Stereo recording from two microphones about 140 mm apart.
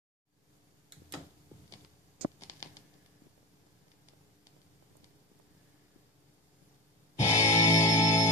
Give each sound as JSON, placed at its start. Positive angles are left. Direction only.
{"t": 7.2, "sound": "music", "side_deg": 20}